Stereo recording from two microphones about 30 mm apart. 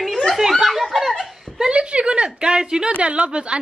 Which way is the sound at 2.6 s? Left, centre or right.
Right.